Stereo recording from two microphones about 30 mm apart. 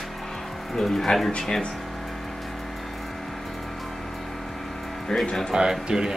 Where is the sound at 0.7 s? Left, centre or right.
Centre.